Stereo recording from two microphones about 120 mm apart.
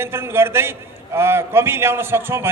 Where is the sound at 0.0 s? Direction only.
20° right (ahead or behind).